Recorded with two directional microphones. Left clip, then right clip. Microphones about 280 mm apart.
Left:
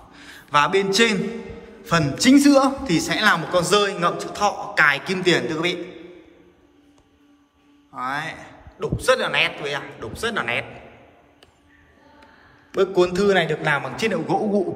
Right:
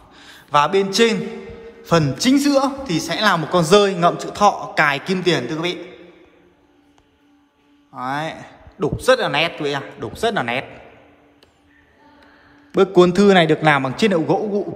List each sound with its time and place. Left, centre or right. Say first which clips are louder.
0.1 s a man's voice: right 2 dB; centre
7.9 s a man's voice: right 2 dB; centre
12.7 s a man's voice: right 5 dB; right; by 14.7 s centre